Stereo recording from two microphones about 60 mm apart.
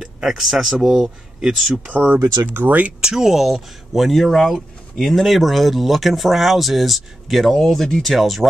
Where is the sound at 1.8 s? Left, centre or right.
Right.